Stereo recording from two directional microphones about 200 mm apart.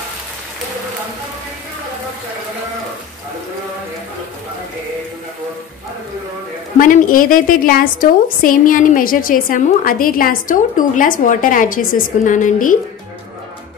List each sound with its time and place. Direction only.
6.8 s a woman's voice: 45° left (ahead or behind)